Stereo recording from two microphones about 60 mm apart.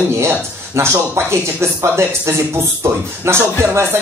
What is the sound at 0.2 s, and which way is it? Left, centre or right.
Speech, right.